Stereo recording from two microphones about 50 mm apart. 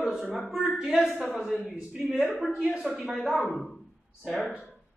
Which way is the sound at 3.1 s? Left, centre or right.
Centre.